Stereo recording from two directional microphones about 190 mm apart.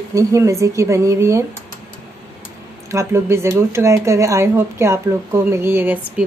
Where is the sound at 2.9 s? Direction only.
15° right (ahead or behind).